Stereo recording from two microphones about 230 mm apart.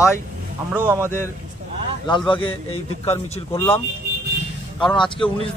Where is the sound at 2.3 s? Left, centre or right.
Left.